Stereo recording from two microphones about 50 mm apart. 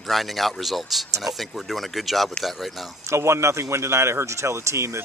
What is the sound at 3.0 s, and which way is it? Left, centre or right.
Speech, right.